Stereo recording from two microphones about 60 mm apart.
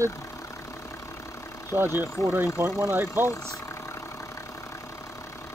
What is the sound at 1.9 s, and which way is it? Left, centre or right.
Speech, right.